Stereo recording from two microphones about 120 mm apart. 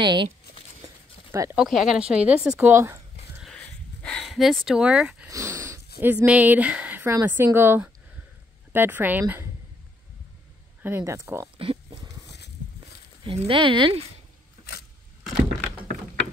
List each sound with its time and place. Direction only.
0.0 s speech: 40° right (ahead or behind)
0.8 s a sound: 25° right (ahead or behind)
1.5 s speech: 5° right (ahead or behind)
2.6 s speech: 20° right (ahead or behind)
3.4 s a sound: 10° left (ahead or behind); by 5.3 s 10° right (ahead or behind)
5.3 s speech: 25° right (ahead or behind)
10.8 s speech: 20° right (ahead or behind)
11.5 s a sound: 50° right (ahead or behind)
13.2 s speech: 45° right (ahead or behind)